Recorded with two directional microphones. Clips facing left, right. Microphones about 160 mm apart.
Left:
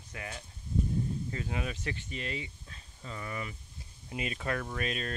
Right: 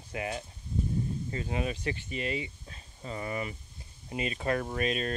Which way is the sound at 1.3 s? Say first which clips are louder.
Right 3 dB; 5° right (ahead or behind).